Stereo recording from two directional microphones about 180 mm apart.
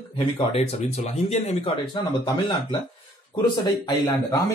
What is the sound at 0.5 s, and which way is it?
Speech, 35° left (ahead or behind).